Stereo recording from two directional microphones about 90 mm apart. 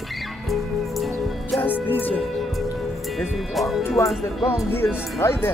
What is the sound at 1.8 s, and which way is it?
Speech, 20° left (ahead or behind).